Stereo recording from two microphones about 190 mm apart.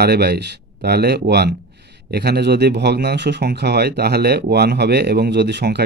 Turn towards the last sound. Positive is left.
turn(degrees=-60)  # may be behind; listen again after turning